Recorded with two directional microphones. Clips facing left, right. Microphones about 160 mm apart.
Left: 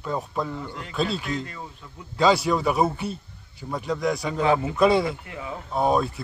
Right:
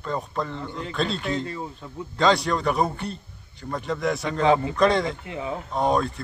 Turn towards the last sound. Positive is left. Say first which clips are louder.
# even
turn(degrees=5)  # may be behind; listen again after turning